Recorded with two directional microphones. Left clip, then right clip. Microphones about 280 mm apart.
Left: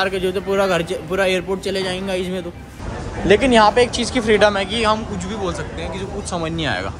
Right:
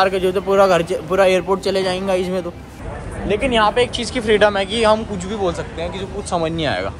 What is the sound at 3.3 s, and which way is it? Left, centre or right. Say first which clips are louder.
Speech: left 3 dB; left.